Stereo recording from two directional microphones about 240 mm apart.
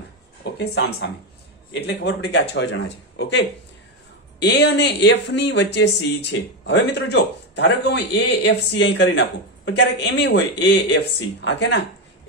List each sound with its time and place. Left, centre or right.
0.4 s speech: left